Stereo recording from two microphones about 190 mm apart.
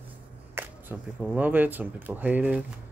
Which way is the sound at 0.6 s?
10° right (ahead or behind).